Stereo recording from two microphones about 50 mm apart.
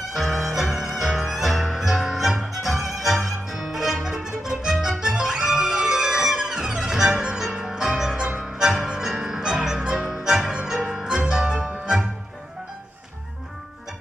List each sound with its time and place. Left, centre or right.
0.1 s music: centre